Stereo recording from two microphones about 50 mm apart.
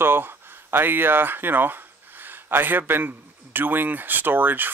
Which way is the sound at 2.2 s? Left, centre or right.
Right.